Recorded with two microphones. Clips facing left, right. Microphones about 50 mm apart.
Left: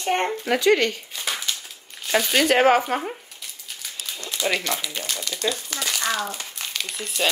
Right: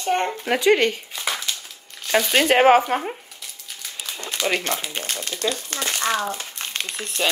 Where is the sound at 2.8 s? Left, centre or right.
Centre.